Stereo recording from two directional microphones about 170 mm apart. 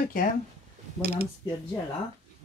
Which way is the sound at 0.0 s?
55° left (ahead or behind).